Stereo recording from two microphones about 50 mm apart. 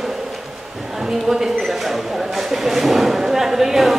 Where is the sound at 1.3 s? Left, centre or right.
Centre.